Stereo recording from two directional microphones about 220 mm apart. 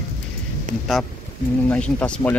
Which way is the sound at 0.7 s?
35° right (ahead or behind).